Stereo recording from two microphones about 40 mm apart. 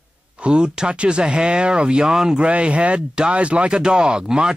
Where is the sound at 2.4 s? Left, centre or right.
Right.